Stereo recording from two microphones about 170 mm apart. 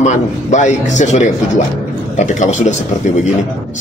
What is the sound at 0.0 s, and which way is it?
Speech, 45° left (ahead or behind).